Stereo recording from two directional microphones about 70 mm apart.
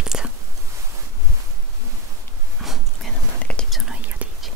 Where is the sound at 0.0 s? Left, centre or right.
Centre.